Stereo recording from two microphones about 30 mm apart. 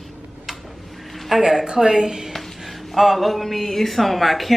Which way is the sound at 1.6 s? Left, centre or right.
Right.